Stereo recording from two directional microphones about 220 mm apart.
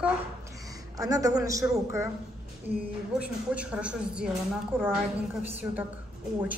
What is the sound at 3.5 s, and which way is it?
Speech, 5° right (ahead or behind).